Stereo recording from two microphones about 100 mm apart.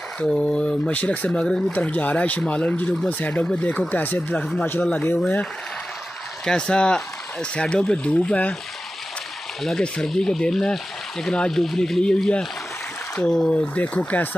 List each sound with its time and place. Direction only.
0.2 s speech: 10° left (ahead or behind)
6.4 s speech: 5° left (ahead or behind)
9.6 s speech: 5° left (ahead or behind)